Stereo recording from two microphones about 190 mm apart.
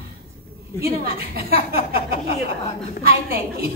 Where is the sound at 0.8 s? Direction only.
55° right (ahead or behind).